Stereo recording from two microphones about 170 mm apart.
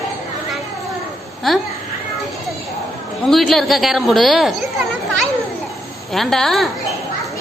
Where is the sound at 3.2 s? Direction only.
Centre (ahead or behind).